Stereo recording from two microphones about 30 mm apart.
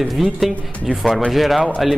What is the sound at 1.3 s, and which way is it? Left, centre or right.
Speech, centre.